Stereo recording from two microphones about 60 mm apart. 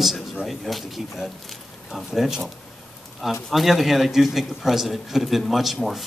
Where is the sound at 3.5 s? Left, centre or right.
Centre.